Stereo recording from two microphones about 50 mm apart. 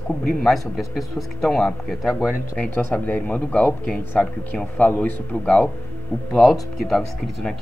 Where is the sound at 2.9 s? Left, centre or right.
Left.